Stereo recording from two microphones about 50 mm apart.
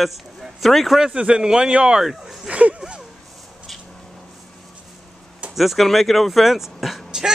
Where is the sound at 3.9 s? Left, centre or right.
Centre.